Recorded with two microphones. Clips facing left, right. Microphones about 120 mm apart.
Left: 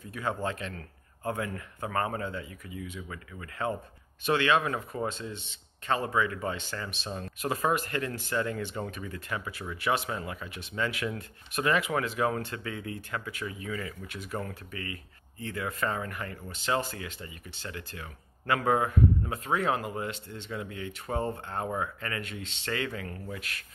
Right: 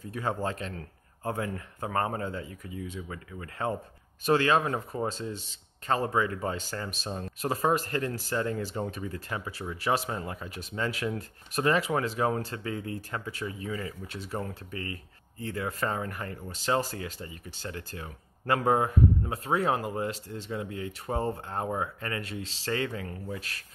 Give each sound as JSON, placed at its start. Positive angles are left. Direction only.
{"t": 0.1, "sound": "speech", "side_deg": -35}
{"t": 7.1, "sound": "speech", "side_deg": -25}
{"t": 23.3, "sound": "speech", "side_deg": -35}